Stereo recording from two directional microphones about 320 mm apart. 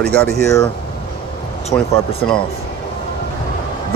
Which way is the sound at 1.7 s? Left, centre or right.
Centre.